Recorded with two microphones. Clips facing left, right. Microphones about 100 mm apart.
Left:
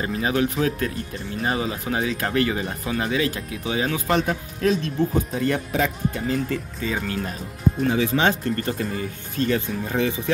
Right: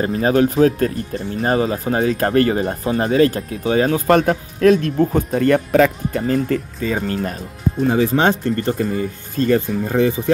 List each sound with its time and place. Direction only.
0.0 s speech: 40° right (ahead or behind)